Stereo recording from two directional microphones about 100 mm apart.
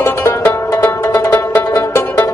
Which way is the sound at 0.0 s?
25° left (ahead or behind).